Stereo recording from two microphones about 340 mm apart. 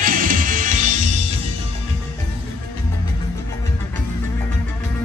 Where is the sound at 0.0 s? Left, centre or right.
Right.